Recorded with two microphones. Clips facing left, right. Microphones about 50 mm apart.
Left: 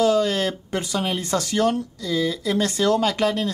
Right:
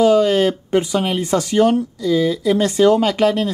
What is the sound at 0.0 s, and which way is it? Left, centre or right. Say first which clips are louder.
Speech: right 6 dB; right.